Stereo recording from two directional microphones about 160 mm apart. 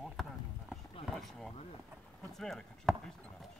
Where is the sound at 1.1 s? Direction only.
Centre (ahead or behind).